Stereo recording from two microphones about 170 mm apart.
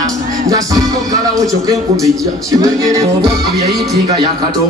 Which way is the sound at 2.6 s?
20° right (ahead or behind).